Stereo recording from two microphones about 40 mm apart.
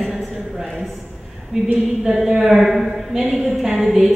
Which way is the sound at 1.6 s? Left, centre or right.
Centre.